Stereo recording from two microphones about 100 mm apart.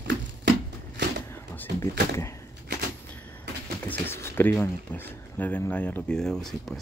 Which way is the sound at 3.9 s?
20° left (ahead or behind).